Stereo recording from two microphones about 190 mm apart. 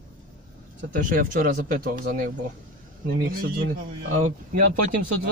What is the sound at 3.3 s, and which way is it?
Speech, 50° right (ahead or behind).